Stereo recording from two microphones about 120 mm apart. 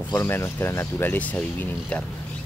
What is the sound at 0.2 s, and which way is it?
Speech, 20° left (ahead or behind).